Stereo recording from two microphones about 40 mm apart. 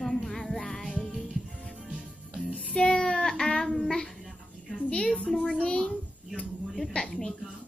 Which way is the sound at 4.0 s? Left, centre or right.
Centre.